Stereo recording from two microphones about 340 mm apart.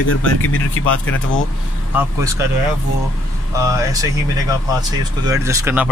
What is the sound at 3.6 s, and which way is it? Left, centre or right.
Speech, centre.